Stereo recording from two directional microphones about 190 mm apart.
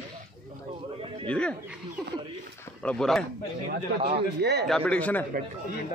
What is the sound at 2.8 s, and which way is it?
Speech, 5° left (ahead or behind).